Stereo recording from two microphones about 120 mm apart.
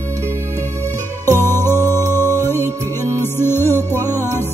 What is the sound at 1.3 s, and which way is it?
Music, 20° left (ahead or behind).